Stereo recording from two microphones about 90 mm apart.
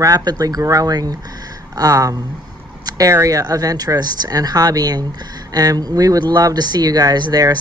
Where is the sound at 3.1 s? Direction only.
40° right (ahead or behind).